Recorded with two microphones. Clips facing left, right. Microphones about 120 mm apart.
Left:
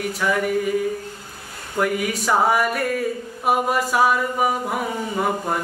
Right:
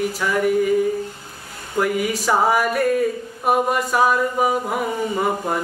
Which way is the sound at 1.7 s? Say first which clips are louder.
Right 2 dB; centre (ahead or behind).